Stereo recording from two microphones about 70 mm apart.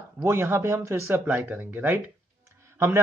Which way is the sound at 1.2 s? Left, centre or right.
Right.